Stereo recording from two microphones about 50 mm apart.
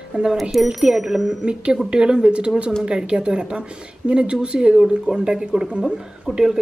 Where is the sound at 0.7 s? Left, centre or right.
Centre.